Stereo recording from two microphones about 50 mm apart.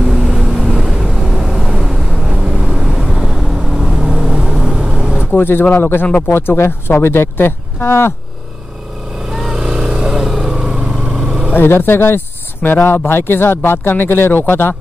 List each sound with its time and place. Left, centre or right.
0.2 s vehicle: centre
2.3 s vehicle: centre
5.3 s speech: left
6.0 s speech: left
6.3 s speech: left
9.3 s vehicle: centre
10.7 s vehicle: right
11.5 s speech: left